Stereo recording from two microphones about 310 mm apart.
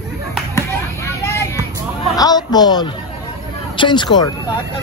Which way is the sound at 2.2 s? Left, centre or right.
Centre.